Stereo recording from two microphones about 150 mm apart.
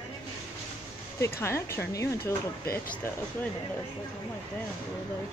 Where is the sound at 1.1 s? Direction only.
15° left (ahead or behind).